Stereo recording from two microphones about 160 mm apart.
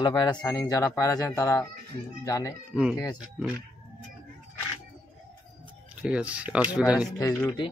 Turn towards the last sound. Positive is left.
turn(degrees=20)  # may be behind; listen again after turning